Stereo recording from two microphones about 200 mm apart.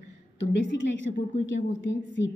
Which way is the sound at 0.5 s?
60° left (ahead or behind).